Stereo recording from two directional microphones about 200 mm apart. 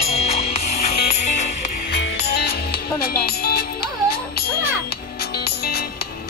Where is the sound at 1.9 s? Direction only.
55° left (ahead or behind).